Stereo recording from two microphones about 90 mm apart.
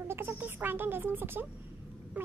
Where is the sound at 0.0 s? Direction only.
25° right (ahead or behind).